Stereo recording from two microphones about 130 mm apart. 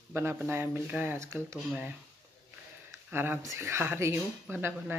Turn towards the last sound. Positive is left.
turn(degrees=-15)  # may be behind; listen again after turning